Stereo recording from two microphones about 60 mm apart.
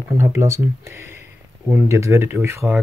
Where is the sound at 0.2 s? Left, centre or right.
Right.